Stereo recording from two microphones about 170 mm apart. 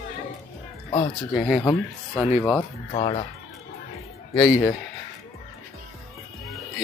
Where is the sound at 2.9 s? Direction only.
35° left (ahead or behind).